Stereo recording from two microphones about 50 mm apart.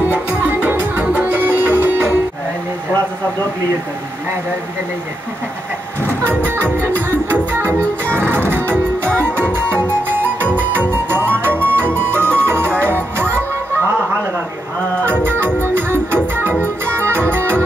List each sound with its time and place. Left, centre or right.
0.1 s music: right
6.4 s music: right
15.0 s music: right